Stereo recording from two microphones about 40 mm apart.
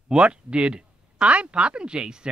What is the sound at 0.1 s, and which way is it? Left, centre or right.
Speech, right.